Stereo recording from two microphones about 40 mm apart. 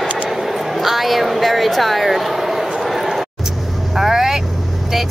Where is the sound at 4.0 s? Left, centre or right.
Centre.